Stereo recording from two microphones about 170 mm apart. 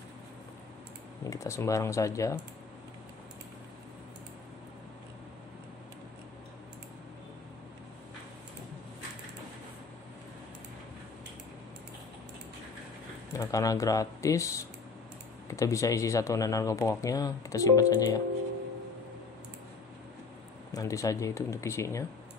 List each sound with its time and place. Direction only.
1.2 s speech: 20° left (ahead or behind)
13.3 s speech: 20° left (ahead or behind)
15.5 s speech: 20° left (ahead or behind)
20.7 s speech: 20° left (ahead or behind)